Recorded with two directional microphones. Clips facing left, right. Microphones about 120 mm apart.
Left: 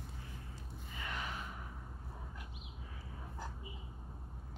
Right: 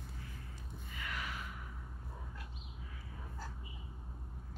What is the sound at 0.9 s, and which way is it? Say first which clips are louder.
Gasp: left 1 dB; 30° left (ahead or behind).